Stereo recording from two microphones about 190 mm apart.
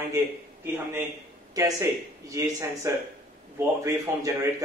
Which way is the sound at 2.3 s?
20° right (ahead or behind).